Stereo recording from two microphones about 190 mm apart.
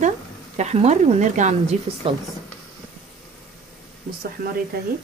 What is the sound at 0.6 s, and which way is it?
Speech, 35° right (ahead or behind).